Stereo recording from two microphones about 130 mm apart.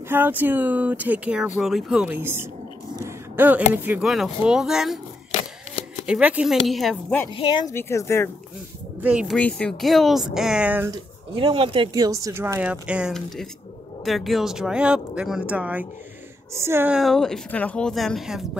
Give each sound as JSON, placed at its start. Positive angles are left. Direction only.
{"t": 0.1, "sound": "speech", "side_deg": -15}
{"t": 3.0, "sound": "a sound", "side_deg": -20}
{"t": 4.0, "sound": "speech", "side_deg": 0}
{"t": 6.0, "sound": "speech", "side_deg": -10}
{"t": 7.3, "sound": "speech", "side_deg": 40}
{"t": 7.7, "sound": "speech", "side_deg": 20}
{"t": 9.0, "sound": "speech", "side_deg": -10}
{"t": 9.4, "sound": "speech", "side_deg": 10}
{"t": 11.3, "sound": "speech", "side_deg": -40}
{"t": 11.9, "sound": "speech", "side_deg": -30}
{"t": 12.8, "sound": "speech", "side_deg": -10}
{"t": 16.9, "sound": "speech", "side_deg": 0}